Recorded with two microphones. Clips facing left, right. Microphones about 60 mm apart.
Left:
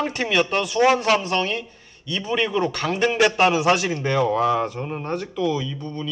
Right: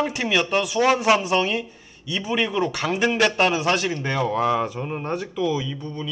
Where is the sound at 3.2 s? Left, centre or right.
Centre.